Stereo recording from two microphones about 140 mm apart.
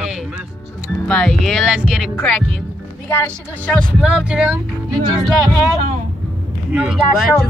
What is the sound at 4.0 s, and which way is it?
Speech, 10° right (ahead or behind).